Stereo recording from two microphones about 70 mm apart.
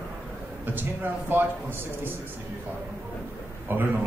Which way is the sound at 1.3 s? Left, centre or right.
Right.